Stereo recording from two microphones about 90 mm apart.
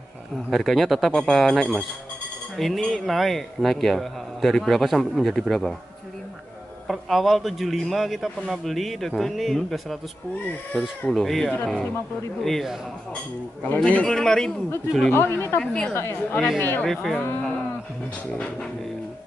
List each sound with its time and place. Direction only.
0.5 s a man's voice: centre (ahead or behind)
6.9 s a man's voice: centre (ahead or behind)
15.0 s speech: 25° left (ahead or behind)
15.6 s speech: 10° left (ahead or behind)
15.9 s a woman's voice: 30° left (ahead or behind)
16.8 s a man's voice: 5° left (ahead or behind)